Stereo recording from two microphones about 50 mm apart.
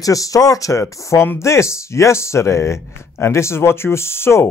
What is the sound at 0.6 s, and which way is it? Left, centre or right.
Speech, left.